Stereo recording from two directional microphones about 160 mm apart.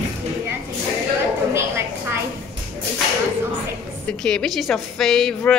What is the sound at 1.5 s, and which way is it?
Speech, 15° right (ahead or behind).